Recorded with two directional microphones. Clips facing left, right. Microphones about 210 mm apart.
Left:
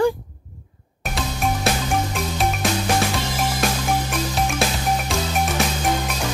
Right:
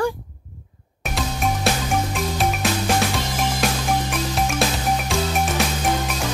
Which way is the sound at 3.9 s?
Centre (ahead or behind).